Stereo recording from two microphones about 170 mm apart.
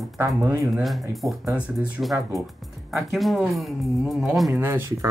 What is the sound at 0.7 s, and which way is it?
Speech, centre (ahead or behind).